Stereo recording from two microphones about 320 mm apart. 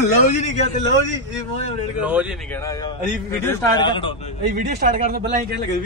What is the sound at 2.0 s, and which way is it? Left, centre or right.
Speech, centre.